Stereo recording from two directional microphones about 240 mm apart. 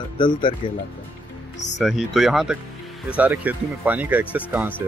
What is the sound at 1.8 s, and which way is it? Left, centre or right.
Speech, centre.